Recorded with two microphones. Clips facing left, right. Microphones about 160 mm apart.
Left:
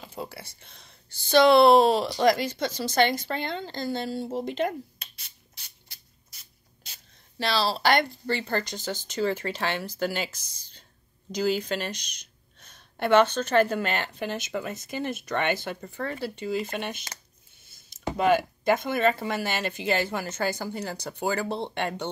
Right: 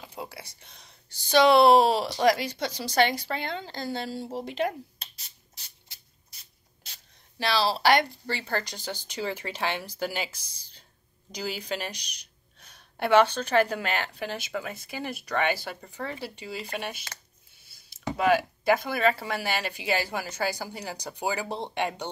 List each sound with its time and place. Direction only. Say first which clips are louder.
0.0 s speech: left 2 dB; 10° right (ahead or behind)
4.9 s a sound: right 1 dB; 35° right (ahead or behind)
7.3 s speech: even; 10° right (ahead or behind)
18.1 s speech: left 1 dB; 5° right (ahead or behind)